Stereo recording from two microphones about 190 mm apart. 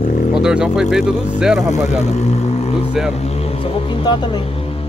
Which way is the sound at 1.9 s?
35° left (ahead or behind).